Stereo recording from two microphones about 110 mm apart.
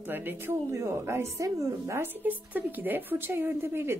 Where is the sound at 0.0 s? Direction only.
20° right (ahead or behind).